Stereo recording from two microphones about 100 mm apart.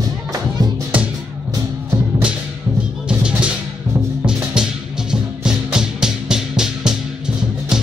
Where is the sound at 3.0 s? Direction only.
10° right (ahead or behind).